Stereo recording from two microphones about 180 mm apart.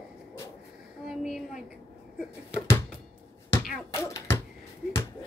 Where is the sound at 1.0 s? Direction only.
Centre (ahead or behind).